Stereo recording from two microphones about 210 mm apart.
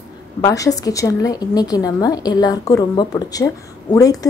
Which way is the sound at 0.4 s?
15° left (ahead or behind).